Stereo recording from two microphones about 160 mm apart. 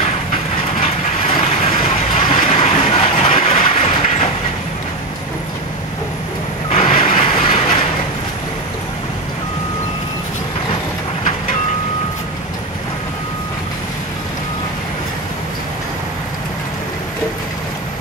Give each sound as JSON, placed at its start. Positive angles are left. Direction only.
{"t": 0.8, "sound": "vehicle", "side_deg": 35}
{"t": 7.0, "sound": "vehicle", "side_deg": 35}